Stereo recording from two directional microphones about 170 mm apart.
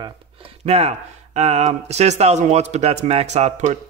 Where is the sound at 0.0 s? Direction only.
35° right (ahead or behind).